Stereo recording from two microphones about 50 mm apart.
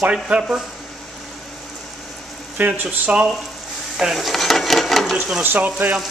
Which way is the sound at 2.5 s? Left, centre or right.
Right.